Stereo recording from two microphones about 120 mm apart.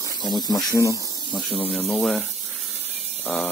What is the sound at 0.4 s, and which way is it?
Speech, 30° left (ahead or behind).